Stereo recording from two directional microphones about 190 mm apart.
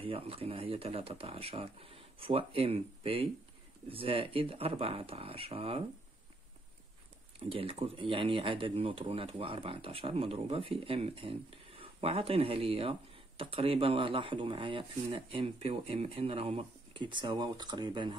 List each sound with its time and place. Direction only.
0.0 s speech: 30° right (ahead or behind)
7.3 s speech: 30° right (ahead or behind)